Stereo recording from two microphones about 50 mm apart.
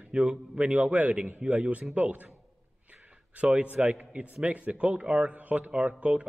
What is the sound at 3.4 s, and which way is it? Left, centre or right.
Speech, right.